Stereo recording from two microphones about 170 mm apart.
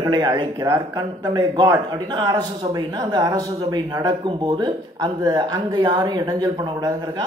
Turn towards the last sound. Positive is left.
turn(degrees=-20)  # may be behind; listen again after turning